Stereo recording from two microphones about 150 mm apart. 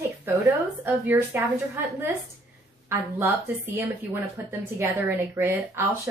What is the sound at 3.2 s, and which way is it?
Speech, 15° right (ahead or behind).